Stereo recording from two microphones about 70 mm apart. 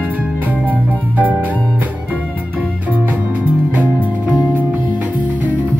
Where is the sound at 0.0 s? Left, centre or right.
Centre.